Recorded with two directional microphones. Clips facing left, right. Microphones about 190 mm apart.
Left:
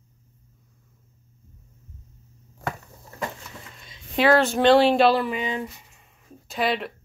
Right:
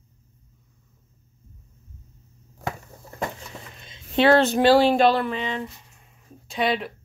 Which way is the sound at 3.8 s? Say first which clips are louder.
Right 2 dB; 25° right (ahead or behind).